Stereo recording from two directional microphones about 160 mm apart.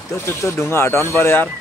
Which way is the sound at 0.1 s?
15° left (ahead or behind).